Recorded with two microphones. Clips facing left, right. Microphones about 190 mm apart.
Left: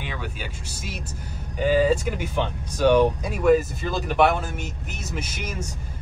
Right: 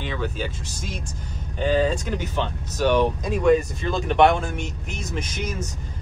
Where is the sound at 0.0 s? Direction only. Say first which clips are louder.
Right 5 dB; 10° left (ahead or behind).